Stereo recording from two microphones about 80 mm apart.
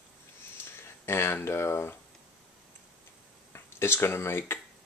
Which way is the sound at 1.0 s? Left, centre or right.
Left.